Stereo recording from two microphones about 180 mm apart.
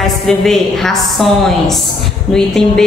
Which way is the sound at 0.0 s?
Centre (ahead or behind).